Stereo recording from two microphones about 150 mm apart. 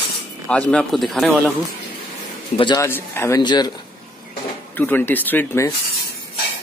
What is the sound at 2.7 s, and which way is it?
Speech, 15° left (ahead or behind).